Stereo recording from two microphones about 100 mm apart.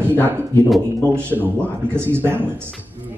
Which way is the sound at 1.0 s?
25° right (ahead or behind).